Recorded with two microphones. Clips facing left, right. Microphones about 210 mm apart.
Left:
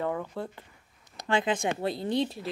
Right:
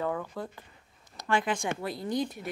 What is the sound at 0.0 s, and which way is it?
Speech, 20° left (ahead or behind).